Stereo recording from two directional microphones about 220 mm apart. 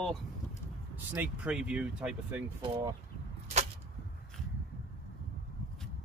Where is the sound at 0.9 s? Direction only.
10° right (ahead or behind).